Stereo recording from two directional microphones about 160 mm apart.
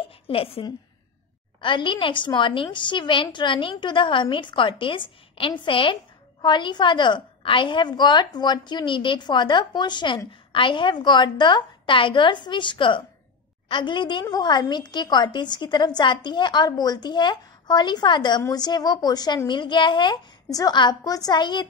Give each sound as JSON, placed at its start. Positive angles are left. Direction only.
{"t": 0.3, "sound": "a woman's voice", "side_deg": 35}